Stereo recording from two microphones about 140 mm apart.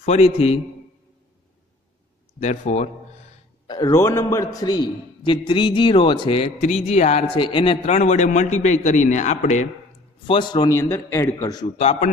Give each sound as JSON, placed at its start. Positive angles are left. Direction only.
{"t": 0.0, "sound": "a man's voice", "side_deg": 45}
{"t": 2.4, "sound": "a man's voice", "side_deg": 55}
{"t": 3.6, "sound": "a sound", "side_deg": 30}
{"t": 3.9, "sound": "a man's voice", "side_deg": 20}
{"t": 6.6, "sound": "a man's voice", "side_deg": 55}
{"t": 7.2, "sound": "a man's voice", "side_deg": 35}
{"t": 7.9, "sound": "a man's voice", "side_deg": 55}
{"t": 10.2, "sound": "a man's voice", "side_deg": 35}
{"t": 10.8, "sound": "speech", "side_deg": 20}
{"t": 11.8, "sound": "a man's voice", "side_deg": 50}